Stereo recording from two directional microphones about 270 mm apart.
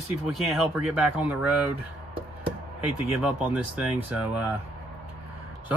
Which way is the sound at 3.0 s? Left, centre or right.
Centre.